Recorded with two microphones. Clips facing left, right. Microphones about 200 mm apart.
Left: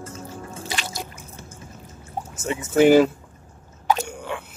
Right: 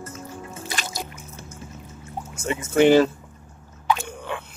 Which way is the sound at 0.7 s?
45° right (ahead or behind).